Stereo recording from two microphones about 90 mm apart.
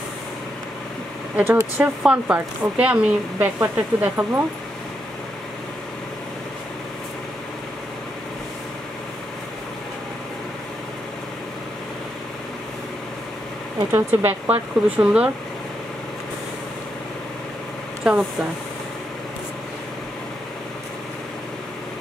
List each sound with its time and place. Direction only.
1.3 s speech: 20° right (ahead or behind)
13.9 s speech: 20° right (ahead or behind)
18.1 s speech: 5° right (ahead or behind)